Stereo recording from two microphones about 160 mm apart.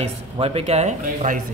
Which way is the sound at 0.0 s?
40° right (ahead or behind).